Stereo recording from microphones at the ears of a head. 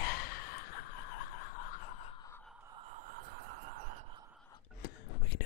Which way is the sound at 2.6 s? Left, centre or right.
Right.